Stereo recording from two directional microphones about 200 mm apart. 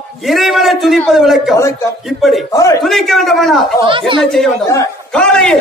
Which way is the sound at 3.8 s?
25° right (ahead or behind).